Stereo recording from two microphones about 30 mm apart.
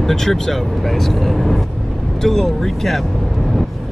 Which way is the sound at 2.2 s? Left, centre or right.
Centre.